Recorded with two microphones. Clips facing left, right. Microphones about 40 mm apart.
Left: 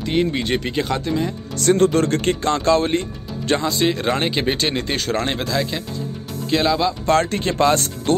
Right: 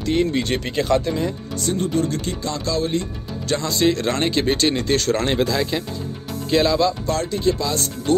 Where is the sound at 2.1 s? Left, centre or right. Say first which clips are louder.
Left 6 dB; left.